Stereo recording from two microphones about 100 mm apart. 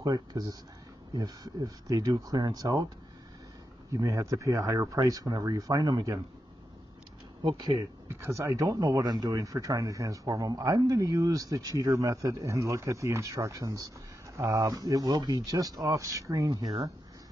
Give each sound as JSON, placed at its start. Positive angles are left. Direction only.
{"t": 0.0, "sound": "speech", "side_deg": -40}
{"t": 3.9, "sound": "speech", "side_deg": -30}
{"t": 7.4, "sound": "speech", "side_deg": -45}
{"t": 8.1, "sound": "speech", "side_deg": -25}